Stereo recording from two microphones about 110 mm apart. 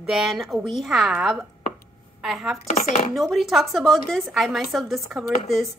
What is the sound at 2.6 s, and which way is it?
Speech, 90° left.